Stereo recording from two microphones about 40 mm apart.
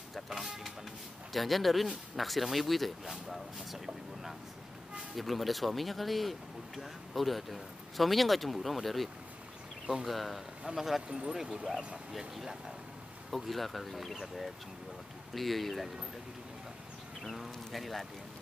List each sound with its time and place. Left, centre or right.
0.1 s speech: centre
11.0 s speech: centre
15.3 s speech: centre
17.6 s speech: centre